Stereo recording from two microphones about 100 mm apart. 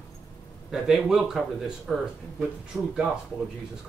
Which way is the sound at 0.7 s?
5° right (ahead or behind).